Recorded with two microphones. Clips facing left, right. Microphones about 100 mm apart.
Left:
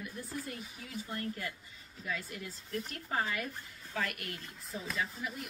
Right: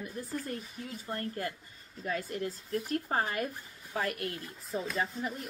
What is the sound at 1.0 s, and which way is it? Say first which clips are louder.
Speech: right 4 dB; 45° right (ahead or behind).